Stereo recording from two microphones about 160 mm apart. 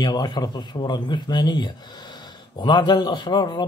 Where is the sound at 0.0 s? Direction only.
25° left (ahead or behind).